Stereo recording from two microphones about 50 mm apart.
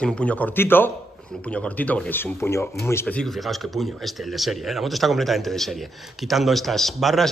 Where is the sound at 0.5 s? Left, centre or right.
Left.